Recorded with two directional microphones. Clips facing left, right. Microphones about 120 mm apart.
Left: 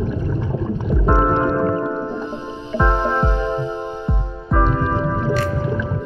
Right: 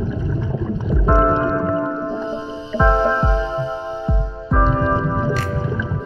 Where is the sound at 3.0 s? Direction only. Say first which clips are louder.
Right 2 dB; 50° left (ahead or behind).